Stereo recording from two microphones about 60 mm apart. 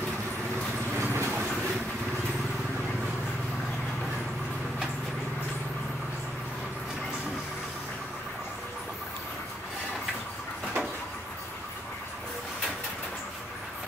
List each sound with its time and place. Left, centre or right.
0.9 s vehicle: right